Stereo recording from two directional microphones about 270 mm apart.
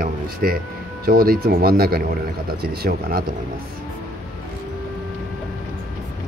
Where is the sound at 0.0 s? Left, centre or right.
Right.